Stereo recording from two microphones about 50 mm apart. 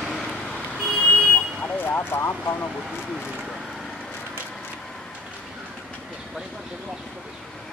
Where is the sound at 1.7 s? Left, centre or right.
Left.